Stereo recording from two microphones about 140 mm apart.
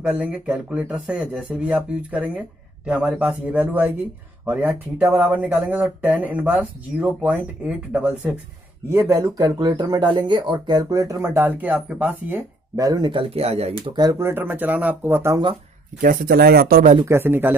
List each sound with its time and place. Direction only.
0.1 s speech: 10° right (ahead or behind)
8.9 s speech: 25° right (ahead or behind)
11.3 s speech: 10° right (ahead or behind)
12.7 s speech: 25° right (ahead or behind); by 13.9 s 45° right (ahead or behind)
13.9 s speech: 25° right (ahead or behind)
16.0 s speech: 80° right
17.0 s speech: 15° right (ahead or behind)